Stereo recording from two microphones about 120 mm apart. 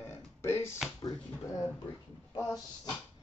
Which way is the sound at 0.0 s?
20° left (ahead or behind).